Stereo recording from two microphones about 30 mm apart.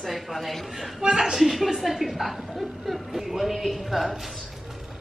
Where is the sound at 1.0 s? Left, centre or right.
Right.